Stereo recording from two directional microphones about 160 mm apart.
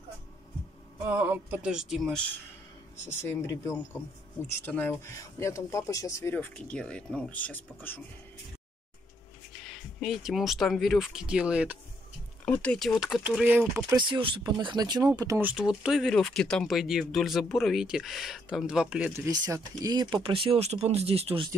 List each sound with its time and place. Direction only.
1.0 s speech: 10° right (ahead or behind)
3.1 s speech: 15° left (ahead or behind)
6.5 s speech: 5° left (ahead or behind)
9.9 s speech: centre (ahead or behind)
12.4 s speech: 5° left (ahead or behind); by 13.9 s 10° right (ahead or behind)
13.9 s speech: 30° right (ahead or behind)
15.4 s speech: 5° right (ahead or behind)
19.1 s speech: 20° right (ahead or behind); by 21.5 s 40° right (ahead or behind)